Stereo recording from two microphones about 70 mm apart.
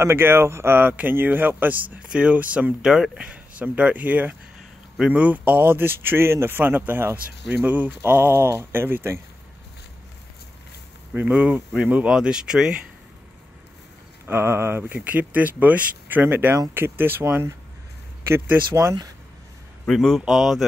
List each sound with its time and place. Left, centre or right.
0.0 s speech: right
2.8 s speech: centre; by 9.2 s right
11.1 s speech: centre
14.2 s speech: right
19.9 s speech: centre